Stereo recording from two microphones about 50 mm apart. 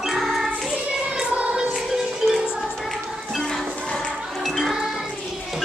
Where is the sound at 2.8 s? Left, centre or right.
Centre.